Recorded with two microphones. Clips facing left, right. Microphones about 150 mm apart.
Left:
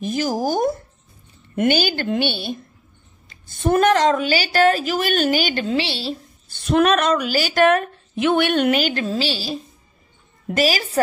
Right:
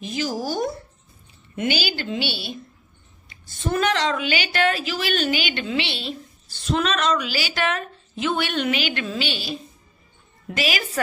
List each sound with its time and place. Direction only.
0.0 s a woman's voice: 50° left (ahead or behind)
6.5 s a woman's voice: 55° left (ahead or behind); by 11.0 s 35° left (ahead or behind)